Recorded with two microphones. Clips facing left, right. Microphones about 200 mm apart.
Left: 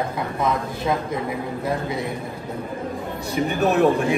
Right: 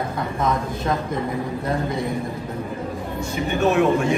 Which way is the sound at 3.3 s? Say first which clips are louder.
Even; 35° left (ahead or behind).